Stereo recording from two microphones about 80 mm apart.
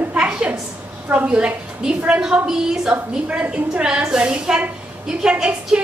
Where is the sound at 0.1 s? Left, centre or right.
Centre.